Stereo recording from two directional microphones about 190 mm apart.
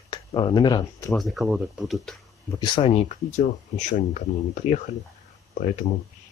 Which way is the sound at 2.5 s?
25° left (ahead or behind).